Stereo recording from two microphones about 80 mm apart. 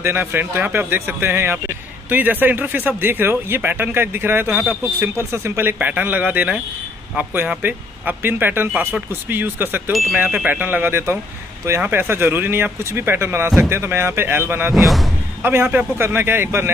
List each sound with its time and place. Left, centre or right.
0.0 s speech: right
5.1 s speech: right
14.7 s speech: centre
15.6 s a man's voice: centre
16.0 s speech: right